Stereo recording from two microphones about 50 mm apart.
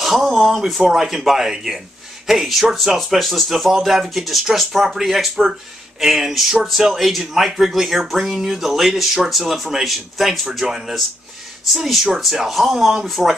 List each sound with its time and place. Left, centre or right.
0.0 s speech: centre